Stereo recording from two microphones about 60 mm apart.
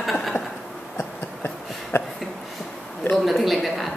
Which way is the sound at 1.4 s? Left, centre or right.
Left.